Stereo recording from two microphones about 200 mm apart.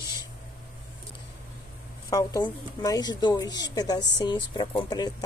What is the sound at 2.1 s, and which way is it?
Speech, 20° left (ahead or behind).